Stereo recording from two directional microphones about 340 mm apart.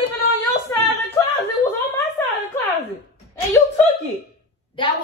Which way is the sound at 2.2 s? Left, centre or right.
Centre.